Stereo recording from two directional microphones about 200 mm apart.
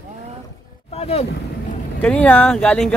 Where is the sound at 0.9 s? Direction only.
30° left (ahead or behind).